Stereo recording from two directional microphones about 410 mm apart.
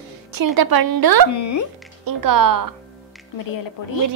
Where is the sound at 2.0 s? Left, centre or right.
Right.